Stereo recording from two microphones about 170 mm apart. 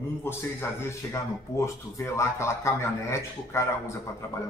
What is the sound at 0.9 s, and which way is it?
Speech, 15° left (ahead or behind).